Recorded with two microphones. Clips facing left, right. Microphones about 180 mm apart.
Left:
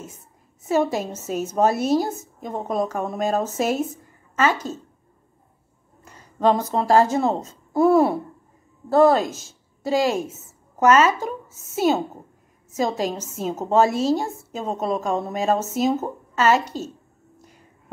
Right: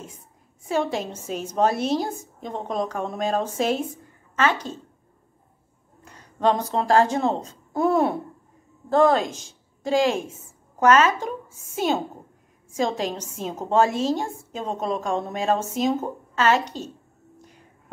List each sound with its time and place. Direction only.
0.0 s a sound: 45° left (ahead or behind)
0.9 s speech: 5° left (ahead or behind)
6.0 s a woman's voice: 5° left (ahead or behind)